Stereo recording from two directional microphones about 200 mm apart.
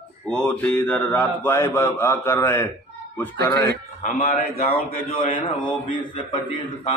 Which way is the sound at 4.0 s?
30° left (ahead or behind).